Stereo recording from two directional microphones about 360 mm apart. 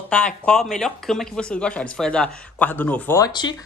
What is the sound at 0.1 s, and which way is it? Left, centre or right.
Speech, centre.